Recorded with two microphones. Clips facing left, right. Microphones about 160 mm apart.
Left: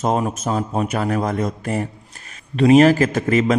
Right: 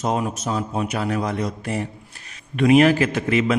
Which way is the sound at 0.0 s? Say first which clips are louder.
Left 3 dB; 45° left (ahead or behind).